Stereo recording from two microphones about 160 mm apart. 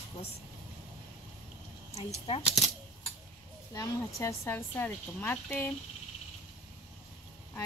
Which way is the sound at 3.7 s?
20° left (ahead or behind).